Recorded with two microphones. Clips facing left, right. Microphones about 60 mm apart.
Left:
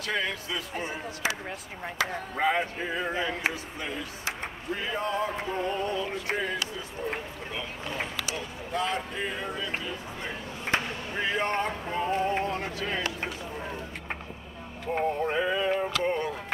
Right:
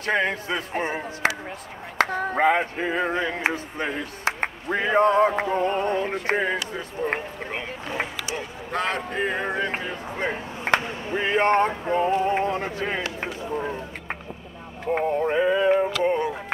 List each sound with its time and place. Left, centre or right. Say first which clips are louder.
0.0 s a man's voice: right 7 dB; right
1.2 s speech: right 6 dB; right
2.0 s male singing: right 8 dB; right
8.7 s male singing: right 4 dB; right
11.7 s music: right 7 dB; right
12.2 s a sound: right 5 dB; right
15.2 s music: right 7 dB; centre